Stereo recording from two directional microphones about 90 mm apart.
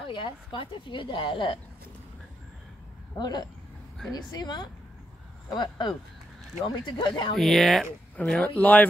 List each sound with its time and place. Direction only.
0.0 s speech: 65° left (ahead or behind)
3.2 s speech: 55° left (ahead or behind)
7.3 s speech: centre (ahead or behind)
8.5 s speech: 15° left (ahead or behind)